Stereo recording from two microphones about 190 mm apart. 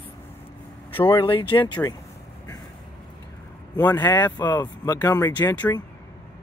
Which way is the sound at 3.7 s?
10° left (ahead or behind).